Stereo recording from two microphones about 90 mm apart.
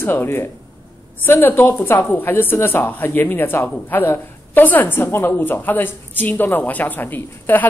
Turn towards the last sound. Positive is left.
turn(degrees=20)  # may be behind; listen again after turning